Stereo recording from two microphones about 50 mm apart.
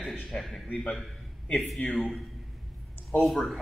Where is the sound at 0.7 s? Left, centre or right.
Left.